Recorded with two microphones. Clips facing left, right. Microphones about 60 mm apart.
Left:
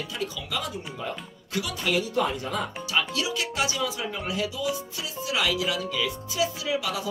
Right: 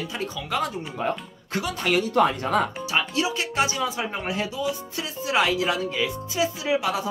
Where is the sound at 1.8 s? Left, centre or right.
Right.